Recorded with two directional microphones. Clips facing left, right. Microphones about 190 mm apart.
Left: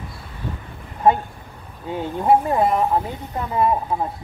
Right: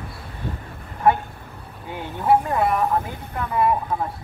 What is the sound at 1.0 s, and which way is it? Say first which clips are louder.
Speech: left 2 dB; 20° left (ahead or behind).